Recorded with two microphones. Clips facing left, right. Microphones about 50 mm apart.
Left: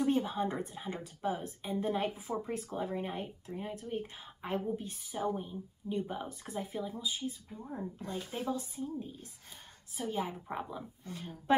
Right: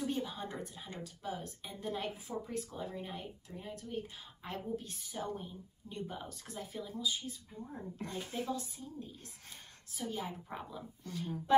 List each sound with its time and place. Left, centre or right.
0.0 s speech: left